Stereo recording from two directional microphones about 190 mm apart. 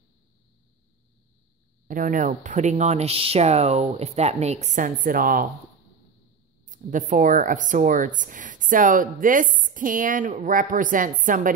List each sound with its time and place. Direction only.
1.9 s speech: 45° right (ahead or behind)
6.6 s speech: 40° right (ahead or behind)